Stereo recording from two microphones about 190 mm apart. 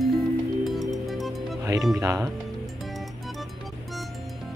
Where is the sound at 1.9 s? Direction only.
15° right (ahead or behind).